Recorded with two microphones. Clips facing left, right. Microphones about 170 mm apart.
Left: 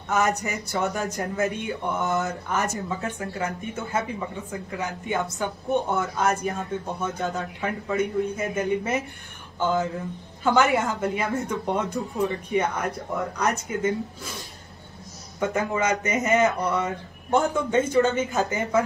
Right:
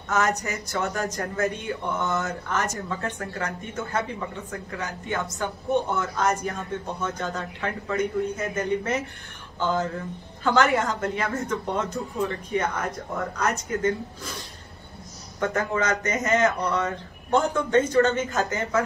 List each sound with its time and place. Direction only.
0.1 s speech: 15° left (ahead or behind)
10.4 s speech: 15° left (ahead or behind)
15.4 s speech: 10° left (ahead or behind)